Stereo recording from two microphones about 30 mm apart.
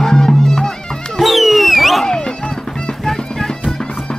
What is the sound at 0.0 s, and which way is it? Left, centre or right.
Music, centre.